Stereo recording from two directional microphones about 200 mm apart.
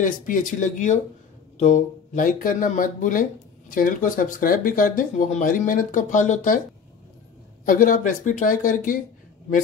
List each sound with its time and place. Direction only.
0.0 s speech: 40° left (ahead or behind)
7.6 s speech: 45° left (ahead or behind)